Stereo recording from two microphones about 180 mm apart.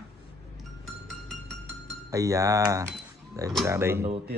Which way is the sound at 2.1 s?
15° right (ahead or behind).